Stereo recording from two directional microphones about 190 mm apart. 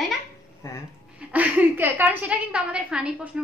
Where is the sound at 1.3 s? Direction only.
10° right (ahead or behind).